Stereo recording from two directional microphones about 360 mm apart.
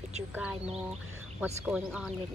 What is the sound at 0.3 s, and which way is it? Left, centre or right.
Speech, centre.